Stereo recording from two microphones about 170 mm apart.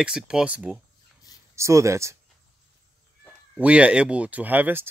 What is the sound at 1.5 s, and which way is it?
Speech, 15° right (ahead or behind).